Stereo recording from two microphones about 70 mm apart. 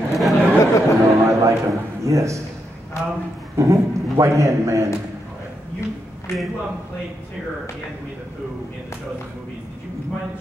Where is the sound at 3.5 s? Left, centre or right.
Right.